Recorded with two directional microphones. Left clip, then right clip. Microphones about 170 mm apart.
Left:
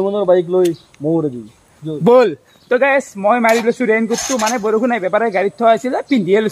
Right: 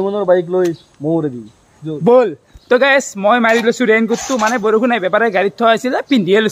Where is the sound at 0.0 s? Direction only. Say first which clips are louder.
Even; 5° right (ahead or behind).